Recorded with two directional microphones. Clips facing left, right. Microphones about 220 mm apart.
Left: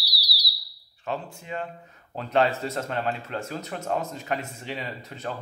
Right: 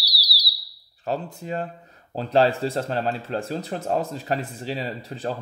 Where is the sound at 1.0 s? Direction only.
35° right (ahead or behind).